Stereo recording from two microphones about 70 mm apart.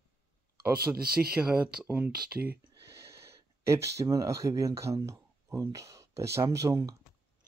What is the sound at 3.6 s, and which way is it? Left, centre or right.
Speech, right.